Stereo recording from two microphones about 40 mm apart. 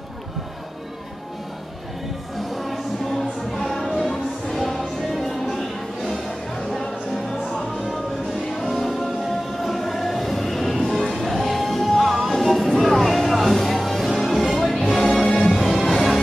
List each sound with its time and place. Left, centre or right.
2.5 s music: centre
7.9 s music: centre